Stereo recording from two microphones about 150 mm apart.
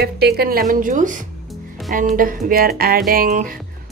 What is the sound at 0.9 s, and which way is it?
A woman's voice, 55° right (ahead or behind).